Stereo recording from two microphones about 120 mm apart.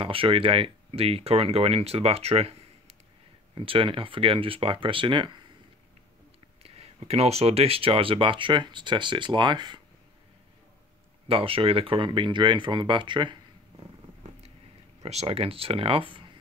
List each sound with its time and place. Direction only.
0.0 s speech: 50° right (ahead or behind)
6.6 s speech: 55° right (ahead or behind); by 9.8 s 40° right (ahead or behind)
11.2 s speech: 50° right (ahead or behind)
15.0 s speech: 60° right (ahead or behind)